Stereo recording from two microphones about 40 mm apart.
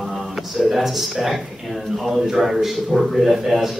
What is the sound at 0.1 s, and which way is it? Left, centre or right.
A man's voice, centre.